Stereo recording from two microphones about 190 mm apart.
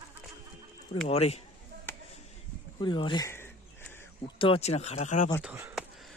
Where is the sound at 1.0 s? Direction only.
30° left (ahead or behind).